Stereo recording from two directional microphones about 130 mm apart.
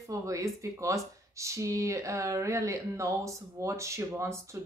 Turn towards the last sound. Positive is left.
turn(degrees=-20)  # may be behind; listen again after turning